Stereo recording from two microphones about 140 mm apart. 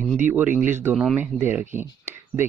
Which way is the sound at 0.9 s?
Centre (ahead or behind).